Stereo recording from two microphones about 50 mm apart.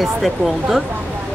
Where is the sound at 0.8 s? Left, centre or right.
Right.